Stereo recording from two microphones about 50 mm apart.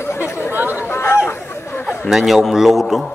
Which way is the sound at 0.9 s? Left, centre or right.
Left.